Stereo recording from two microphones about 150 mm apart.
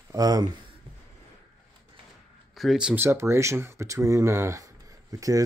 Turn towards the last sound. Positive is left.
turn(degrees=-25)  # may be behind; listen again after turning